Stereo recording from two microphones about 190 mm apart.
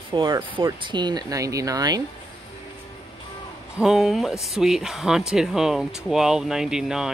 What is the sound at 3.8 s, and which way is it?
Speech, centre (ahead or behind).